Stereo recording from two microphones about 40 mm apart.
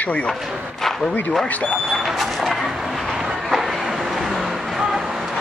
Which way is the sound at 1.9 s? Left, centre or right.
Centre.